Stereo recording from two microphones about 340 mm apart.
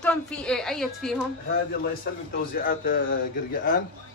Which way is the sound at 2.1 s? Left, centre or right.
Left.